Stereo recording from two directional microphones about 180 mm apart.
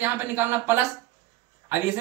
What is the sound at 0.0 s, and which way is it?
Speech, 10° right (ahead or behind).